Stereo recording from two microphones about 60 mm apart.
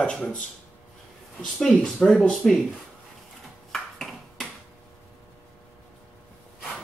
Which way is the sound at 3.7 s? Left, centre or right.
Centre.